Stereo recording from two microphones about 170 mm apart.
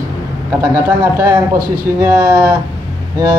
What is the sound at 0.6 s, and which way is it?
A man's voice, 20° right (ahead or behind).